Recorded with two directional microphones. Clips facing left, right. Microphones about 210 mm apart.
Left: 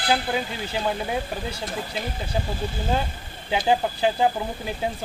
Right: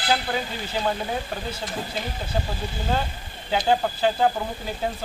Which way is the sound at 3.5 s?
10° left (ahead or behind).